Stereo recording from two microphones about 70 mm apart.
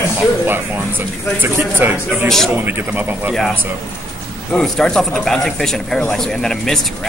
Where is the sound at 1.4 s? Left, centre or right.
Right.